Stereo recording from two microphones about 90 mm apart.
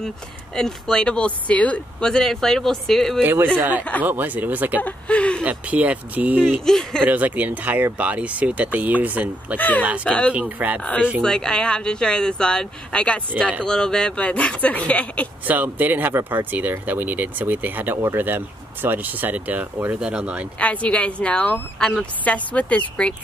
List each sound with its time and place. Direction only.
0.6 s speech: 5° left (ahead or behind)
3.2 s speech: 25° right (ahead or behind)
4.8 s speech: 15° left (ahead or behind)
5.4 s speech: 15° right (ahead or behind)
6.6 s speech: 5° left (ahead or behind)
7.1 s speech: 20° right (ahead or behind)
9.6 s speech: 20° left (ahead or behind)
10.3 s speech: 15° right (ahead or behind)
11.2 s speech: 10° left (ahead or behind)
15.4 s speech: 20° right (ahead or behind)
20.5 s speech: 15° left (ahead or behind)